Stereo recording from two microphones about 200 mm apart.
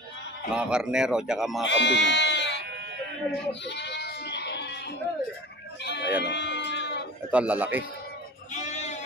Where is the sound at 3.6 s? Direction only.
60° left (ahead or behind).